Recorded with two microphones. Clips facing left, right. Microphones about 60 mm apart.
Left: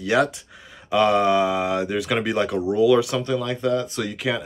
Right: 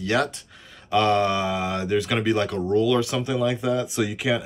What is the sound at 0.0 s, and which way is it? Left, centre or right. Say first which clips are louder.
Speech: left 3 dB; centre.